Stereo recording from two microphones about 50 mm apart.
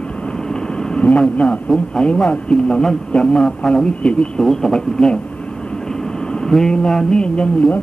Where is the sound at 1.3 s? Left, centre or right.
Left.